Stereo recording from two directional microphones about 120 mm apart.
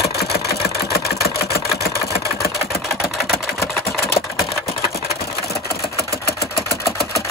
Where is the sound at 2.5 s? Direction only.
Centre (ahead or behind).